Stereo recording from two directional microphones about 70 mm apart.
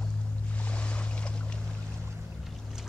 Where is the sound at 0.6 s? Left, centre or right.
Centre.